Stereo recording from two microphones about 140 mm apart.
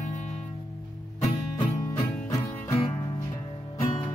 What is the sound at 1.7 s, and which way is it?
Music, 25° left (ahead or behind).